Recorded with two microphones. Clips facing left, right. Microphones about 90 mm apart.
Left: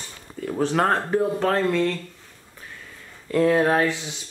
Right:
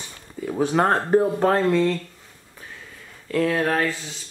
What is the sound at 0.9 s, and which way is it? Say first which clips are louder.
Speech: right 3 dB; 25° right (ahead or behind).